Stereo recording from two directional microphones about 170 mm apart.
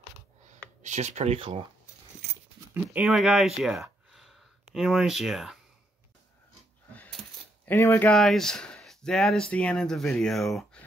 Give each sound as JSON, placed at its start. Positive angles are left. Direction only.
{"t": 0.8, "sound": "speech", "side_deg": -45}
{"t": 2.7, "sound": "speech", "side_deg": -10}
{"t": 6.9, "sound": "coin", "side_deg": 10}
{"t": 7.6, "sound": "speech", "side_deg": 15}
{"t": 8.1, "sound": "speech", "side_deg": 0}